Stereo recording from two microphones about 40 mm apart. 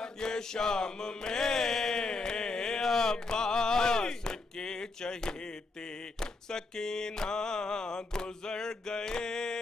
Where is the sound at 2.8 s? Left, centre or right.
Centre.